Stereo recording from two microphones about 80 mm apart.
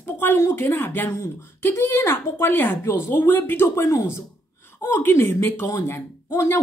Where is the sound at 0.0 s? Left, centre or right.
Left.